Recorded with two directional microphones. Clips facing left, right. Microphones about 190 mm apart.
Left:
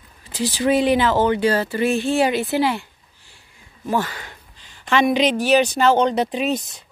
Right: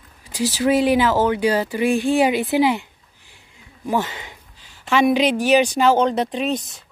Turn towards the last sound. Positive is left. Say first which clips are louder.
# left 1 dB
turn(degrees=5)  # may be behind; listen again after turning